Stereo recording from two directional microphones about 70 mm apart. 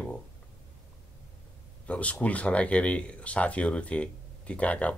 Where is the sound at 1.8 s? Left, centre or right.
Centre.